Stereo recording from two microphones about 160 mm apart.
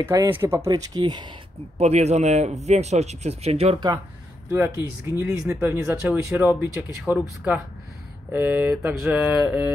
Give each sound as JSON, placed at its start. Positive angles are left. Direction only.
{"t": 0.0, "sound": "speech", "side_deg": -20}
{"t": 1.8, "sound": "speech", "side_deg": -45}
{"t": 4.5, "sound": "speech", "side_deg": -15}